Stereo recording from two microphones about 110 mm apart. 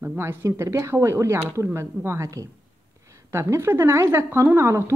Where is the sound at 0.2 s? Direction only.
25° right (ahead or behind).